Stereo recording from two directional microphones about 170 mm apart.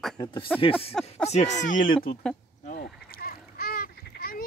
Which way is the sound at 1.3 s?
45° left (ahead or behind).